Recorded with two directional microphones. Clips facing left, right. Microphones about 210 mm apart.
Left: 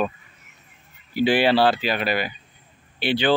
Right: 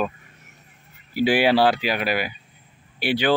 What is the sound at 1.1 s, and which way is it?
A man's voice, 10° right (ahead or behind).